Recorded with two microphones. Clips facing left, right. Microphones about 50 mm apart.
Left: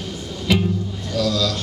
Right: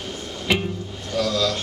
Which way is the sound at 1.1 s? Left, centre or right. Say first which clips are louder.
Left 1 dB; right.